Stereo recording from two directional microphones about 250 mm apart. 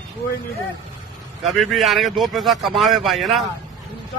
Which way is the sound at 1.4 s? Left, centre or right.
Centre.